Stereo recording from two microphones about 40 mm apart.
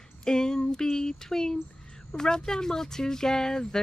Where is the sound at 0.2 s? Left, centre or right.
Centre.